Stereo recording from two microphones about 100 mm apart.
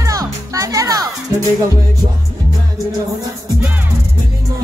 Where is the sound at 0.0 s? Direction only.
35° right (ahead or behind).